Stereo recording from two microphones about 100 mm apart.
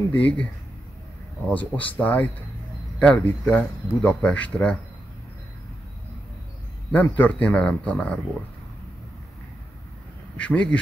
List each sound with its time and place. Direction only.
0.1 s speech: 15° left (ahead or behind)
1.5 s speech: 15° left (ahead or behind)
6.9 s speech: 15° left (ahead or behind)
10.3 s speech: 10° left (ahead or behind)